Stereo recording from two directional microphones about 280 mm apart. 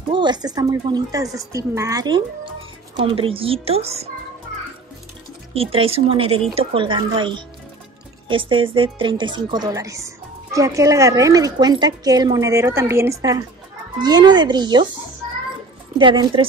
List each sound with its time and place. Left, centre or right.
0.1 s a woman's voice: centre
5.5 s a woman's voice: centre
16.0 s a woman's voice: centre